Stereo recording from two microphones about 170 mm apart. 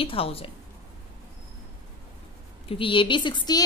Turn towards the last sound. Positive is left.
turn(degrees=25)  # may be behind; listen again after turning